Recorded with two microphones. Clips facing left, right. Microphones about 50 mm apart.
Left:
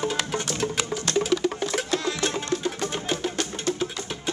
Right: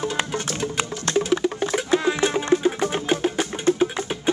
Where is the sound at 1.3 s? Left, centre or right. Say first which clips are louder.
Right 2 dB; centre.